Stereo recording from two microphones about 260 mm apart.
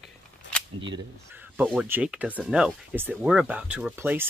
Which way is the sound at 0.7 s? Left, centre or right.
Centre.